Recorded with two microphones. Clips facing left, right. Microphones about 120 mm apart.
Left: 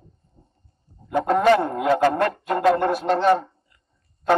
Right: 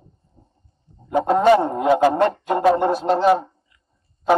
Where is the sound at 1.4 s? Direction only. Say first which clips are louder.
Right 3 dB; 5° right (ahead or behind).